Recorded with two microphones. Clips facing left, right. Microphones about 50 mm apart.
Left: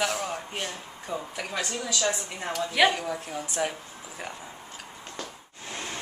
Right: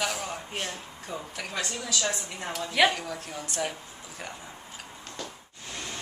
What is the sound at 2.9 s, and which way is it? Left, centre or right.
Speech, centre.